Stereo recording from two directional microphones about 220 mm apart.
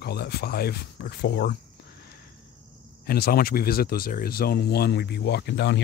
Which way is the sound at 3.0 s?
45° left (ahead or behind).